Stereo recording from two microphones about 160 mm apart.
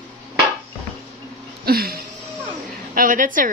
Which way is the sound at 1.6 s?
70° right (ahead or behind).